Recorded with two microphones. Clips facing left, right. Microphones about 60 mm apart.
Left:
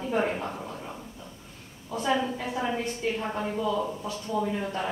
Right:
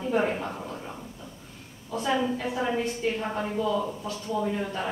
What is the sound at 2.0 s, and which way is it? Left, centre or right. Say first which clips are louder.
A man's voice: right 1 dB; centre.